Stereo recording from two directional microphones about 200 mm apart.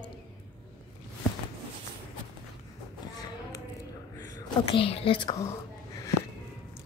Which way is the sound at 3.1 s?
20° left (ahead or behind).